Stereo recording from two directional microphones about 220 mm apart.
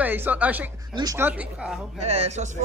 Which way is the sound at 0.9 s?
15° right (ahead or behind).